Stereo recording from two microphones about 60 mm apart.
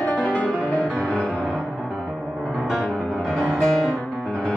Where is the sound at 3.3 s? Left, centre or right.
Centre.